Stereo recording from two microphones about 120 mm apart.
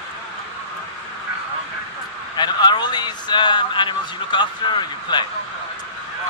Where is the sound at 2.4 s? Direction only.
40° left (ahead or behind).